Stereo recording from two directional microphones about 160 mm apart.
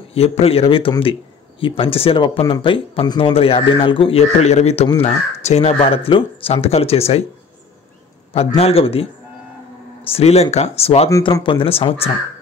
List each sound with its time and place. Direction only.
0.1 s speech: 40° left (ahead or behind)
8.5 s speech: 35° left (ahead or behind)